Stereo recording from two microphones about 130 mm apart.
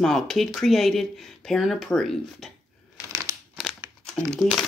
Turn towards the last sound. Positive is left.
turn(degrees=5)  # may be behind; listen again after turning